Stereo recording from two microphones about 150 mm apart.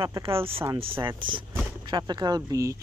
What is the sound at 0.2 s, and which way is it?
Speech, 40° right (ahead or behind).